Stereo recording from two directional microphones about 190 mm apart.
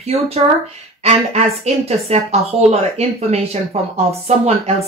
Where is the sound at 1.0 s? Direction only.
35° right (ahead or behind).